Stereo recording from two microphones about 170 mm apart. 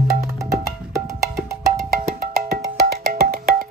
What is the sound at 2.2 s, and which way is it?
Music, 65° right (ahead or behind).